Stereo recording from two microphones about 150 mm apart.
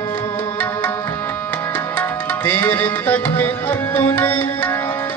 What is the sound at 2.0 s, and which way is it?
Tabla, 15° left (ahead or behind).